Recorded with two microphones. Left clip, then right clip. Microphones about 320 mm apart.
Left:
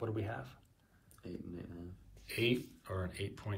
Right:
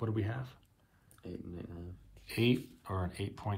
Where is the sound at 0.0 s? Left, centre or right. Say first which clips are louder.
Right 2 dB; centre.